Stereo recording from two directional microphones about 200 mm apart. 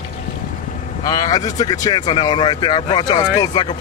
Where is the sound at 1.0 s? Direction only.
20° left (ahead or behind).